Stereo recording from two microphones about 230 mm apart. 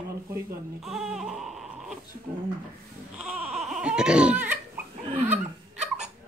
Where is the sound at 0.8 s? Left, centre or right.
Centre.